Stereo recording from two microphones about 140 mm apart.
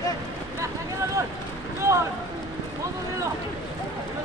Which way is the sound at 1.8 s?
20° right (ahead or behind).